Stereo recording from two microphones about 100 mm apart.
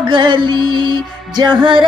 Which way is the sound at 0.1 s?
50° right (ahead or behind).